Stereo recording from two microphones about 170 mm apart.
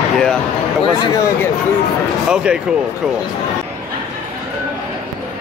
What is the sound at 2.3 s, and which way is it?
Speech, 5° right (ahead or behind).